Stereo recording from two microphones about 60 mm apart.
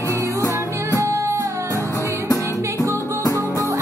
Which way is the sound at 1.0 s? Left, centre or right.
Right.